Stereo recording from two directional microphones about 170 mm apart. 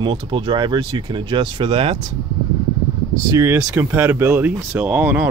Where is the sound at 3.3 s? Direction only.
15° right (ahead or behind).